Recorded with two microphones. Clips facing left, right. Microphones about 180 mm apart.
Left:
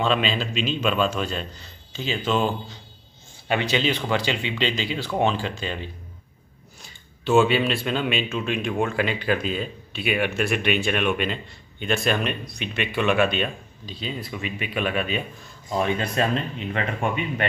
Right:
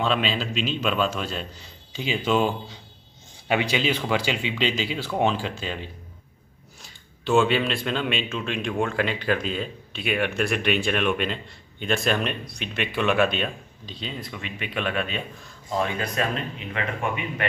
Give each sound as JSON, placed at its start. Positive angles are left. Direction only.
{"t": 0.0, "sound": "speech", "side_deg": 0}
{"t": 15.8, "sound": "speech", "side_deg": 25}